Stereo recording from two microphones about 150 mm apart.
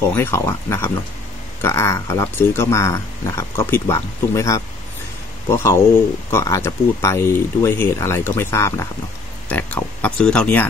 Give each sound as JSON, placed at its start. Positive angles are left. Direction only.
{"t": 0.0, "sound": "speech", "side_deg": 15}